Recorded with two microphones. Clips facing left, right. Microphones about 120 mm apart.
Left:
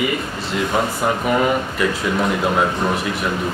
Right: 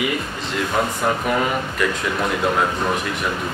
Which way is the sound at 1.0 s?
5° left (ahead or behind).